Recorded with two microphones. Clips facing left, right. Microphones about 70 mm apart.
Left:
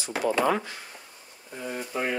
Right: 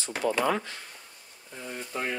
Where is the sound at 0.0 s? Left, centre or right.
Centre.